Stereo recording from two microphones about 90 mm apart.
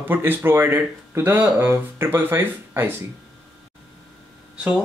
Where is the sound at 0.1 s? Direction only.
25° right (ahead or behind).